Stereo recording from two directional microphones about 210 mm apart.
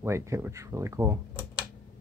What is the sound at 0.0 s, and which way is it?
Speech, 10° right (ahead or behind).